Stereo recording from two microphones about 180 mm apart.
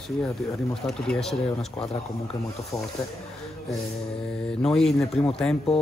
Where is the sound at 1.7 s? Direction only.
30° left (ahead or behind).